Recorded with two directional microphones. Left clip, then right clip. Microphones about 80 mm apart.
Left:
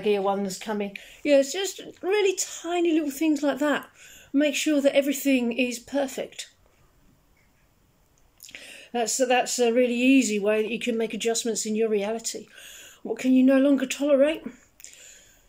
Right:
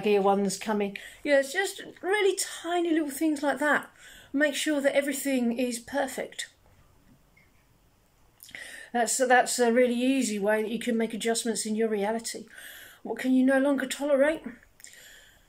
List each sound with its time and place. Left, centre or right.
0.0 s speech: centre
1.4 s speech: centre
8.4 s a sound: centre
9.0 s speech: centre